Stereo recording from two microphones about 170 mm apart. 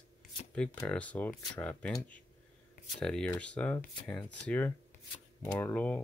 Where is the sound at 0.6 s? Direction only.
10° left (ahead or behind).